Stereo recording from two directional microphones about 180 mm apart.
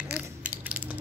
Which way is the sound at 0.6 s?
10° right (ahead or behind).